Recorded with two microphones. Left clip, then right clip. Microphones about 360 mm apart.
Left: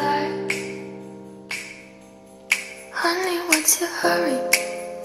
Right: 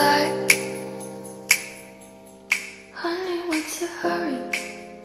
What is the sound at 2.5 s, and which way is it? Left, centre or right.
Music, centre.